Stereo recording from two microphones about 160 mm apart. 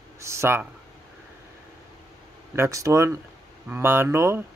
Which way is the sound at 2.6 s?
20° right (ahead or behind).